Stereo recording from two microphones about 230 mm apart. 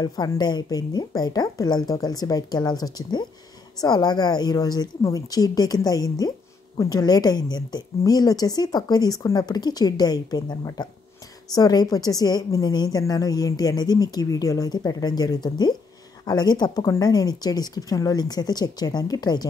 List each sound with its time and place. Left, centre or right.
0.0 s a woman's voice: centre